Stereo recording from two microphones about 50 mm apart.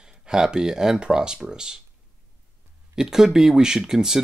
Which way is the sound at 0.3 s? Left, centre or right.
Centre.